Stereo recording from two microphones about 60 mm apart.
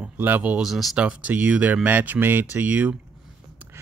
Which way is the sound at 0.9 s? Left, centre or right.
Right.